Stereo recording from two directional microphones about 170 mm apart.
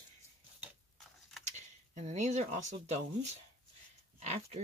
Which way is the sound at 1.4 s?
45° right (ahead or behind).